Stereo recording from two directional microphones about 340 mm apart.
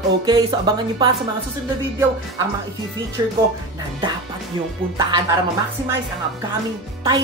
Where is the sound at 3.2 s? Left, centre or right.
Centre.